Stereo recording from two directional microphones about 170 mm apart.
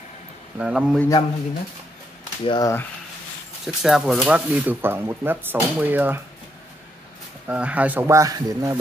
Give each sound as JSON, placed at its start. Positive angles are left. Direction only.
{"t": 0.6, "sound": "speech", "side_deg": -5}
{"t": 1.0, "sound": "a man's voice", "side_deg": 20}
{"t": 3.6, "sound": "speech", "side_deg": 0}
{"t": 7.4, "sound": "speech", "side_deg": -10}